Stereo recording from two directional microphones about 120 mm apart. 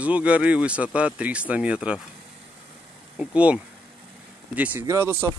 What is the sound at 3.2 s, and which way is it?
Speech, 10° right (ahead or behind).